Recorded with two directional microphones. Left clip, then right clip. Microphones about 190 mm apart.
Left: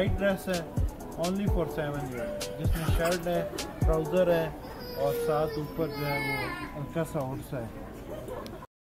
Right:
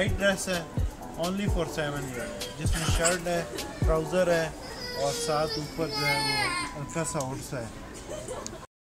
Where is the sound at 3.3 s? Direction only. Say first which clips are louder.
Even; 15° right (ahead or behind).